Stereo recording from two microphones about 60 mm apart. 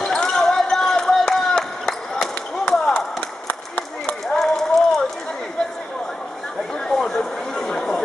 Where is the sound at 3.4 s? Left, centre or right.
Left.